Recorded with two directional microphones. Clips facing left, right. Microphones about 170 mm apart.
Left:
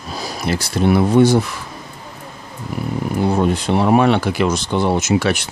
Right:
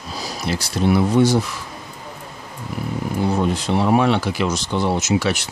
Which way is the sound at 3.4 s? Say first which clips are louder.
Left 3 dB; 55° left (ahead or behind).